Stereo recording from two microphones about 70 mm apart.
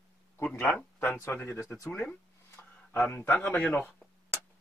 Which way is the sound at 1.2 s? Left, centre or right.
Left.